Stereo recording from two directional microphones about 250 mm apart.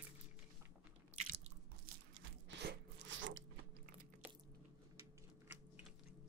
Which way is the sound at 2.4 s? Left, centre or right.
Right.